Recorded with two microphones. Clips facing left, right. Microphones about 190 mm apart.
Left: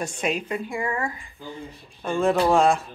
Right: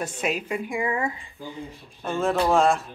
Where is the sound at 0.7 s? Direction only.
15° right (ahead or behind).